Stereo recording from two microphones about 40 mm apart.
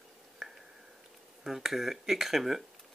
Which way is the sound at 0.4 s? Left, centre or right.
Centre.